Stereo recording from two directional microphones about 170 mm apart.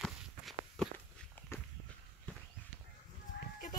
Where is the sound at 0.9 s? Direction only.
10° left (ahead or behind).